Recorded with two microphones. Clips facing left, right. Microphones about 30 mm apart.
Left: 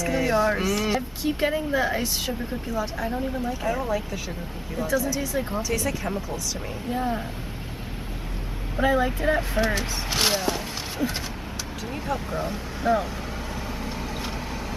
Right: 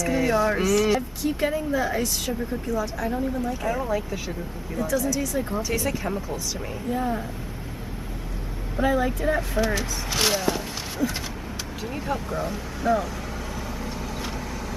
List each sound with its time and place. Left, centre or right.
0.0 s speech: centre
1.2 s speech: left
3.6 s speech: centre
4.7 s speech: centre
5.6 s speech: centre
6.9 s speech: left
8.7 s speech: centre
10.1 s speech: centre
11.9 s speech: centre
12.4 s speech: centre